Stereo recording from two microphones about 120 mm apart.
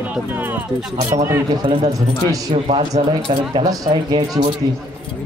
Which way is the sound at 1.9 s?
30° right (ahead or behind).